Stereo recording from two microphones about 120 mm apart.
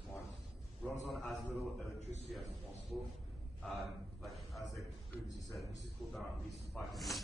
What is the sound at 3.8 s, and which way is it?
Speech, centre (ahead or behind).